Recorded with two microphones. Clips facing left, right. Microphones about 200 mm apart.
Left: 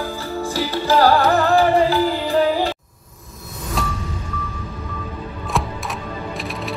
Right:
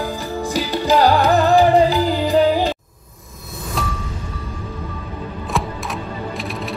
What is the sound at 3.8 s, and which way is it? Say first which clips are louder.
Music: even; centre (ahead or behind).